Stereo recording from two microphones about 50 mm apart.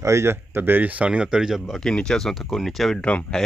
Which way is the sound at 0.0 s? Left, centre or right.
Right.